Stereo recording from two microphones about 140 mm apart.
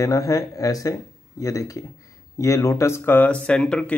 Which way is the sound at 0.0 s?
25° left (ahead or behind).